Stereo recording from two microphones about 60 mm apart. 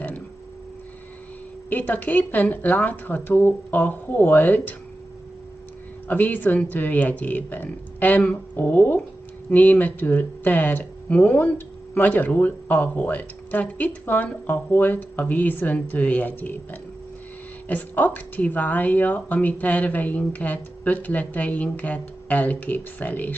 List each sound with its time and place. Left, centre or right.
1.7 s speech: left
6.0 s speech: left
17.6 s speech: left